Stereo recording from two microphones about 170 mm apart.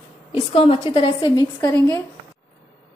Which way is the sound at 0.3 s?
35° left (ahead or behind).